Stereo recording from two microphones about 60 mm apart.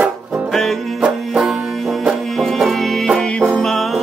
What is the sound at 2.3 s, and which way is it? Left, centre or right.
Music, centre.